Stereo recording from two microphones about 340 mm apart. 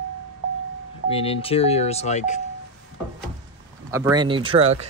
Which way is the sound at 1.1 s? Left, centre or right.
Centre.